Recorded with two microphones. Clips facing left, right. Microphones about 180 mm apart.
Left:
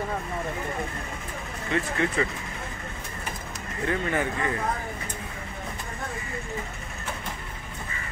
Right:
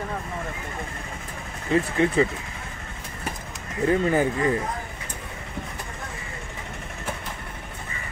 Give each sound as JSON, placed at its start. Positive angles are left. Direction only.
{"t": 1.7, "sound": "speech", "side_deg": -30}
{"t": 3.9, "sound": "speech", "side_deg": -30}